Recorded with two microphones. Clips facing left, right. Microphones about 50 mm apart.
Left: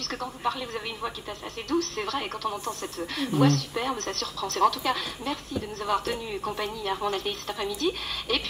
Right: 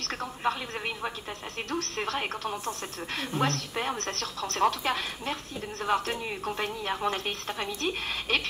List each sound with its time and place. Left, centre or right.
0.0 s speech: right